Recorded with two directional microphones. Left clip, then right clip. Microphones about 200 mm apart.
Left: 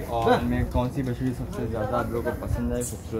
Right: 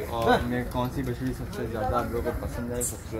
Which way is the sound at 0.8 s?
45° left (ahead or behind).